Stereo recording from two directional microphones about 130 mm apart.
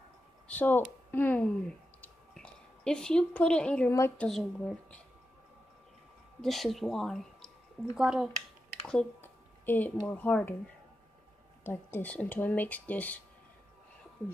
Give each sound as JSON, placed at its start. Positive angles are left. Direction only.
{"t": 0.5, "sound": "speech", "side_deg": 15}
{"t": 6.4, "sound": "speech", "side_deg": 0}
{"t": 9.2, "sound": "speech", "side_deg": 15}
{"t": 11.6, "sound": "speech", "side_deg": 15}